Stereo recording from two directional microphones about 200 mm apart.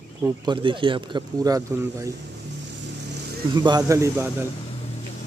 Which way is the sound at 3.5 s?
20° right (ahead or behind).